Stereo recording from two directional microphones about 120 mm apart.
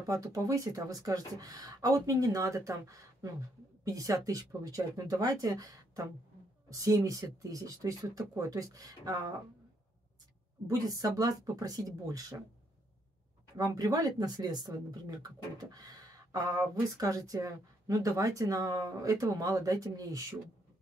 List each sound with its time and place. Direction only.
0.0 s speech: 30° right (ahead or behind)
10.7 s speech: 30° right (ahead or behind)
13.6 s speech: 30° right (ahead or behind)